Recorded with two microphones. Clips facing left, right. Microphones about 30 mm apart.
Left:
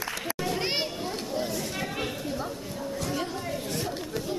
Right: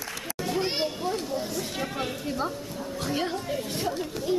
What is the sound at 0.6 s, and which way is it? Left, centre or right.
Children playing, centre.